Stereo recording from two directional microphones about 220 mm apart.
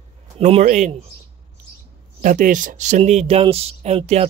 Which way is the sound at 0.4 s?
30° right (ahead or behind).